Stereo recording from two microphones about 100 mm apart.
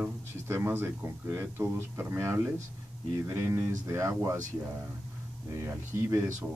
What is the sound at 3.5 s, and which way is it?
Speech, 30° right (ahead or behind).